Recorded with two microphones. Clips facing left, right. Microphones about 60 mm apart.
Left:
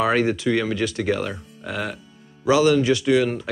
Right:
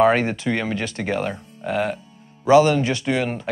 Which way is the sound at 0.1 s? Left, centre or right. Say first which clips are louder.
Left 1 dB; centre.